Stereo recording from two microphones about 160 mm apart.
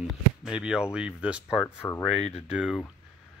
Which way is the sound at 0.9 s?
5° right (ahead or behind).